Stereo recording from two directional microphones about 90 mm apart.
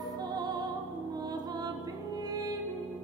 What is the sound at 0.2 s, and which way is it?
Music, 45° right (ahead or behind).